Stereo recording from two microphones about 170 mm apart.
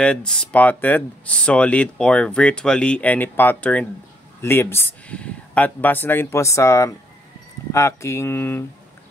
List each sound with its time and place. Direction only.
0.0 s speech: 5° left (ahead or behind)